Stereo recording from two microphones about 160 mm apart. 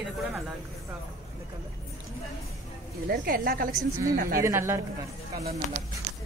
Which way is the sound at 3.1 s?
65° right (ahead or behind).